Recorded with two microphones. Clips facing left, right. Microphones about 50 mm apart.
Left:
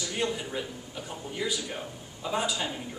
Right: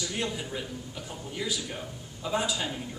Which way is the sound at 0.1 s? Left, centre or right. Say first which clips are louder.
Left 2 dB; centre.